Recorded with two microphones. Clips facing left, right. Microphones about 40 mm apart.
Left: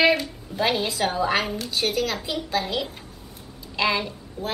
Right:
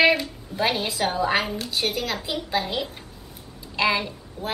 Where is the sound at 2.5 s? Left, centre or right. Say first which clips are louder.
Even; centre.